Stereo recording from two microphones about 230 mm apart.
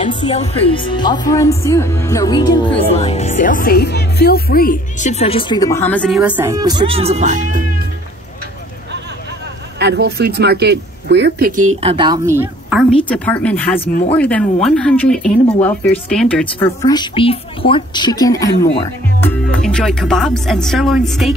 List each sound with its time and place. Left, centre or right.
0.0 s speech: left; by 7.6 s right
9.8 s speech: right
11.8 s a woman's voice: right; by 12.8 s centre
12.9 s speech: centre